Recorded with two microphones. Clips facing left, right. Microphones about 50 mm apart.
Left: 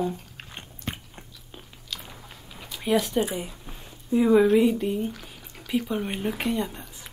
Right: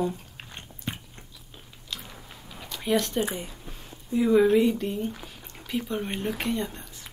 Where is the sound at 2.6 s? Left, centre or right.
Centre.